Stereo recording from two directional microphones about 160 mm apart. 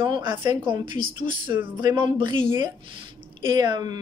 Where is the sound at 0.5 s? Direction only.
30° right (ahead or behind).